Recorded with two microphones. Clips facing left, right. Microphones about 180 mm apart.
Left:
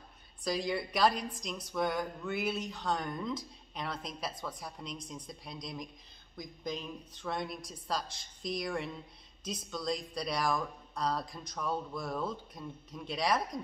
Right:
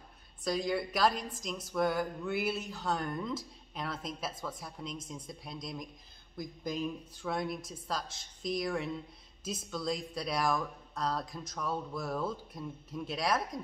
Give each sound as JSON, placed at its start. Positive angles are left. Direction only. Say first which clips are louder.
{"t": 0.4, "sound": "a woman's voice", "louder": "right 1 dB", "side_deg": 0}